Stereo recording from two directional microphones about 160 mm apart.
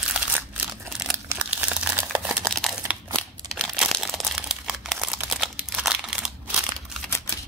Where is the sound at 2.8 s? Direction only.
20° right (ahead or behind).